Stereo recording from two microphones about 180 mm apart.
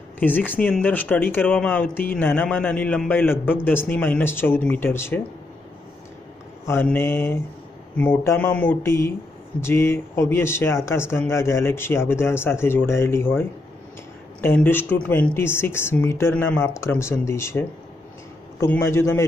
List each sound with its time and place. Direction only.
0.2 s speech: 10° left (ahead or behind)
6.6 s speech: 10° left (ahead or behind)